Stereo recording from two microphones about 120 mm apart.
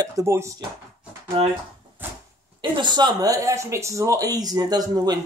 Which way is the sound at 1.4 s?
50° right (ahead or behind).